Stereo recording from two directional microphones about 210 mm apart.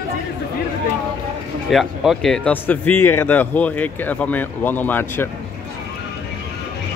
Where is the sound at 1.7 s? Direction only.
Centre (ahead or behind).